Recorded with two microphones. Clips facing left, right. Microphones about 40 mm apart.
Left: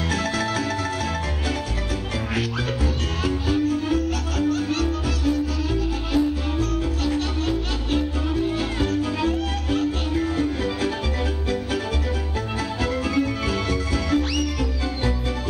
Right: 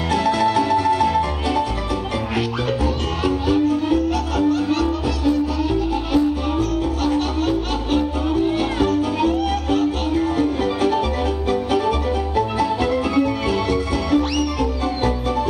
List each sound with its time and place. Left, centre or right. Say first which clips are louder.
0.1 s music: right 9 dB; centre
10.6 s music: right 6 dB; right